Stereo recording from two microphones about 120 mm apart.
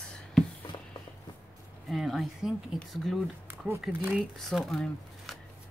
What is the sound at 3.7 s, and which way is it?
Speech, 20° right (ahead or behind).